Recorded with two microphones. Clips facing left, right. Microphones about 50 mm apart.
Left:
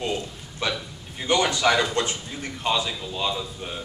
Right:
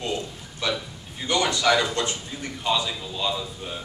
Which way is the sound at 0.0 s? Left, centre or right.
Centre.